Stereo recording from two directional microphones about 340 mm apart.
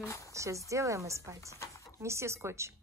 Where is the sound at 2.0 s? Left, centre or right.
Centre.